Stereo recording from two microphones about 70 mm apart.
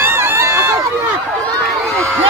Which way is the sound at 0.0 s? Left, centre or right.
Right.